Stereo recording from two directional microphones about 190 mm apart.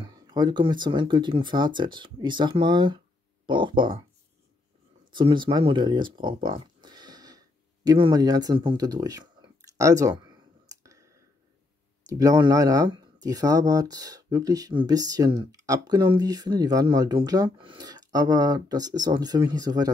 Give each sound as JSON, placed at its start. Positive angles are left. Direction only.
{"t": 0.0, "sound": "speech", "side_deg": -20}
{"t": 5.1, "sound": "a sound", "side_deg": -25}
{"t": 12.1, "sound": "speech", "side_deg": -20}